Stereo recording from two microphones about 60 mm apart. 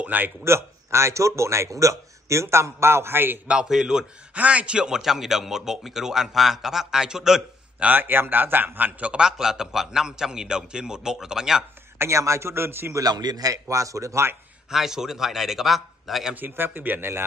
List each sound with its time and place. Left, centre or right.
0.0 s a man's voice: right
0.4 s speech: right
3.4 s speech: centre
4.4 s speech: right
7.8 s a man's voice: right
9.1 s speech: centre
12.0 s speech: right
12.9 s speech: right
14.7 s a man's voice: centre
16.3 s a man's voice: right